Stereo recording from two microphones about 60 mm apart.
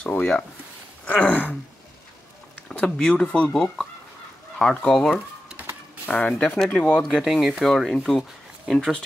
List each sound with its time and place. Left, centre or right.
0.2 s speech: left
1.0 s gasp: left
2.7 s speech: centre
6.0 s speech: left
7.0 s speech: centre
7.6 s speech: centre